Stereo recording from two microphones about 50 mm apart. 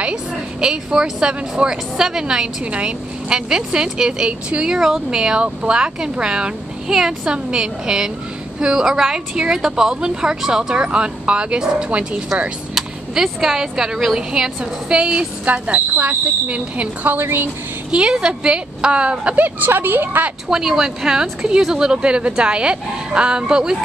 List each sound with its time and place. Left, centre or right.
0.0 s speech: centre
4.7 s speech: centre
6.9 s speech: centre
12.7 s a woman's voice: centre; by 17.5 s right
17.9 s speech: centre
19.3 s a woman's voice: right
20.4 s speech: centre